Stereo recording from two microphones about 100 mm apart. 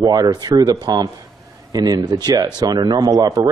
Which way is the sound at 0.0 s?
40° right (ahead or behind).